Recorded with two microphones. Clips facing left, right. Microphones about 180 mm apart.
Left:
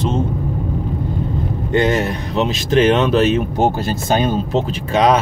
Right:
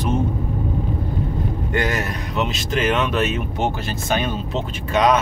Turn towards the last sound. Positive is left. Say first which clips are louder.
# left 3 dB
turn(degrees=30)  # may be behind; listen again after turning